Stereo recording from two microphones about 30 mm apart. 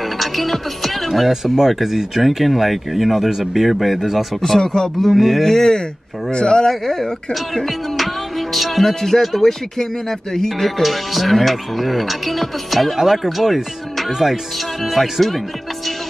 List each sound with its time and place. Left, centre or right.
0.2 s music: centre
1.6 s speech: centre
4.4 s speech: centre
5.1 s speech: centre
5.4 s speech: centre
6.7 s speech: centre
8.0 s music: centre
8.8 s speech: centre